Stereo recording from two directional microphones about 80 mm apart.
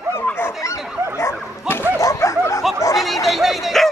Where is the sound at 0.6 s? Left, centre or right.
Left.